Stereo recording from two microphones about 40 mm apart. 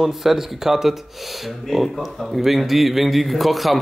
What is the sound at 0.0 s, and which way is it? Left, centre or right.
A man's voice, centre.